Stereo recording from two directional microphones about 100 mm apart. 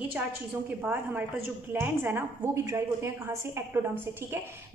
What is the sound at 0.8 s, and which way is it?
A woman's voice, 20° right (ahead or behind).